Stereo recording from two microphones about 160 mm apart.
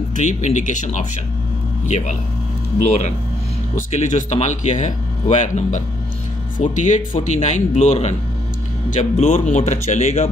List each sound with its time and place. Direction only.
0.1 s speech: 50° left (ahead or behind)